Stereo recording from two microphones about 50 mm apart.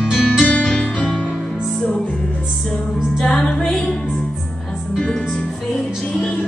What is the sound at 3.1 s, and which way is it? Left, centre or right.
Music, centre.